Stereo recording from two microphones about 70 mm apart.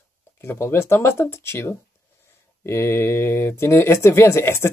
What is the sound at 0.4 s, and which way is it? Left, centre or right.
Speech, left.